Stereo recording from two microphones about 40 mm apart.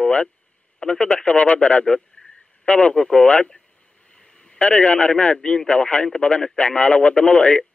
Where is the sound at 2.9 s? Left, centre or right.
Centre.